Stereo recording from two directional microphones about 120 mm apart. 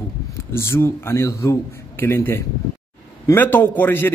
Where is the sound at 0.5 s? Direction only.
20° left (ahead or behind).